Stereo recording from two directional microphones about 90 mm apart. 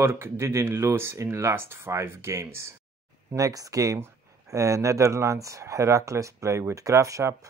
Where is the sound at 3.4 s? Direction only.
40° right (ahead or behind).